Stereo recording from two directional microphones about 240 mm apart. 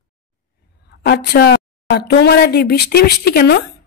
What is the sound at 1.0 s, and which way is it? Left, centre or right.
A woman's voice, left.